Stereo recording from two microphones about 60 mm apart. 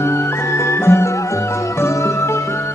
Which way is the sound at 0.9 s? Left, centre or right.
Left.